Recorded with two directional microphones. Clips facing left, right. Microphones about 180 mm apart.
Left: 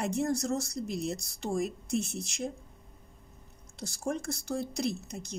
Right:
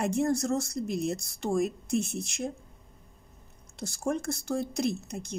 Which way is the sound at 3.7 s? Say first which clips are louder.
Right 3 dB; 50° right (ahead or behind).